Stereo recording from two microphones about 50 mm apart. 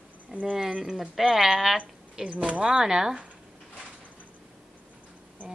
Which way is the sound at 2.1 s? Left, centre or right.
Centre.